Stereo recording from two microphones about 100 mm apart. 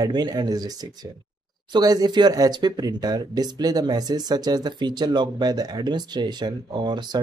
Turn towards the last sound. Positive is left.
turn(degrees=-45)  # may be behind; listen again after turning